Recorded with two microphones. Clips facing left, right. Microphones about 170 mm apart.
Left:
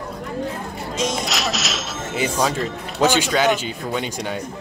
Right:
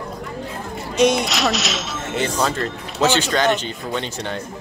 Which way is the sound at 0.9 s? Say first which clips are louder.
Right 8 dB; 65° right (ahead or behind).